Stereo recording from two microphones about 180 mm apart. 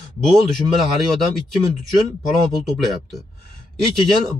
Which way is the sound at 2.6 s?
Centre (ahead or behind).